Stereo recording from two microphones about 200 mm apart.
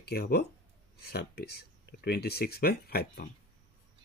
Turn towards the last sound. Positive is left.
turn(degrees=50)  # may be behind; listen again after turning